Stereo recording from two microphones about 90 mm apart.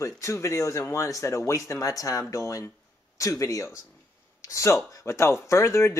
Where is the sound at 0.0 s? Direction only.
35° left (ahead or behind).